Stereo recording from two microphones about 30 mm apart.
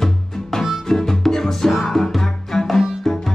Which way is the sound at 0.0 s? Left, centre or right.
Centre.